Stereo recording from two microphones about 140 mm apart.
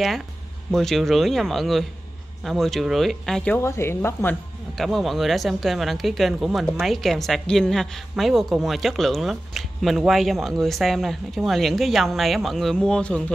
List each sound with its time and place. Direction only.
0.7 s speech: centre (ahead or behind)
3.5 s speech: 20° left (ahead or behind)
4.7 s speech: centre (ahead or behind)